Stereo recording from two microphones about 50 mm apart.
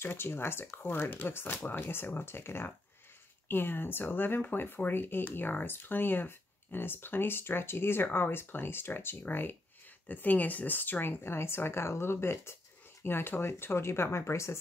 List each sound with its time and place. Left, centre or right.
0.0 s speech: left